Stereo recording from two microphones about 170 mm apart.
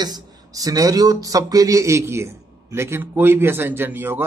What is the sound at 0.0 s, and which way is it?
Speech, 20° right (ahead or behind).